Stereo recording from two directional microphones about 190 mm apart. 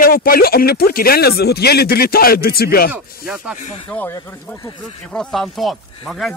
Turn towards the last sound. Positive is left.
turn(degrees=0)  # may be behind; listen again after turning